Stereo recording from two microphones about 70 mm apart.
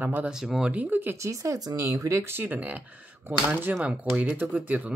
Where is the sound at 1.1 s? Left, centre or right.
Right.